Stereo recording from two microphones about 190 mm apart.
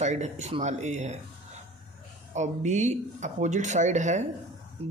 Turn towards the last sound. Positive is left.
turn(degrees=-40)  # may be behind; listen again after turning